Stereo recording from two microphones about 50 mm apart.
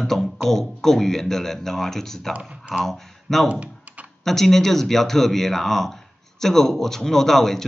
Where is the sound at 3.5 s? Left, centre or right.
Right.